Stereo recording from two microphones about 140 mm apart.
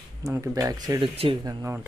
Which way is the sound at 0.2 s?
20° right (ahead or behind).